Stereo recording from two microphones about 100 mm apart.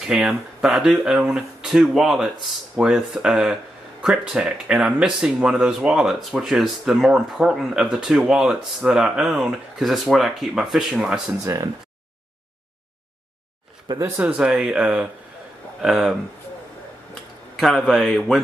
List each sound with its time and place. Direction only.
0.0 s speech: 10° right (ahead or behind)
11.4 s speech: 35° right (ahead or behind)
13.9 s speech: 20° right (ahead or behind)
14.3 s speech: 10° right (ahead or behind)
17.6 s speech: centre (ahead or behind)